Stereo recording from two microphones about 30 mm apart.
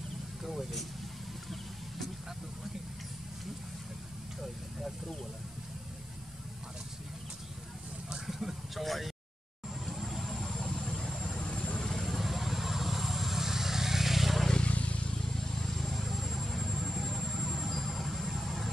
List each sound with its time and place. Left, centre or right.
0.4 s vehicle: centre
4.4 s vehicle: centre
8.3 s vehicle: centre
10.7 s vehicle: centre
11.1 s vehicle: centre
11.4 s vehicle: left
11.8 s vehicle: centre
12.2 s vehicle: centre
14.6 s vehicle: left
15.2 s vehicle: centre
15.9 s vehicle: centre